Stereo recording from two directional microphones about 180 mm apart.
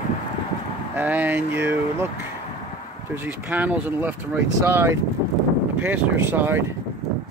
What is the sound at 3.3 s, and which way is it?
Speech, 10° right (ahead or behind).